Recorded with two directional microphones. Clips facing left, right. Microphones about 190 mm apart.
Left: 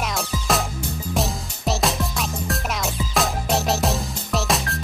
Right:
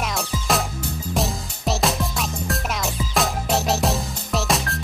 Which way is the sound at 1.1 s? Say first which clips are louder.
Even; centre (ahead or behind).